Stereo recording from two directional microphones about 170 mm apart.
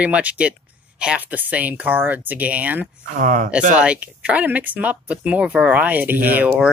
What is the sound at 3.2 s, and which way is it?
Speech, 50° right (ahead or behind).